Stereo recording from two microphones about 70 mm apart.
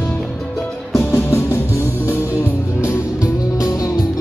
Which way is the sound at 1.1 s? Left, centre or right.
Left.